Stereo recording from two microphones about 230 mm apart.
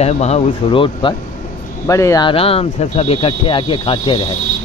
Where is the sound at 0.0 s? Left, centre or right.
Left.